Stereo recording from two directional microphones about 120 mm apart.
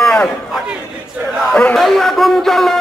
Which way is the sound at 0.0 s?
5° left (ahead or behind).